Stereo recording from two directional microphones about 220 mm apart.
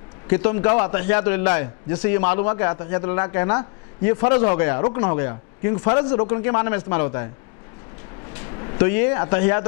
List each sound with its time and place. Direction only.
0.3 s a man's voice: 10° left (ahead or behind)
8.3 s a sound: 15° left (ahead or behind)
9.3 s a man's voice: 10° left (ahead or behind)